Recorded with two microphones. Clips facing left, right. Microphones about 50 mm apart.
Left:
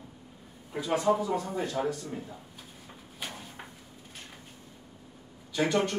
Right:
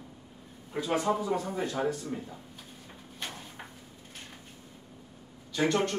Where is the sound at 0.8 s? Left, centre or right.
Centre.